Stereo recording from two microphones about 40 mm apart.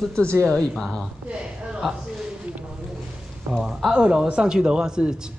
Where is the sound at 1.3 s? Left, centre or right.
Right.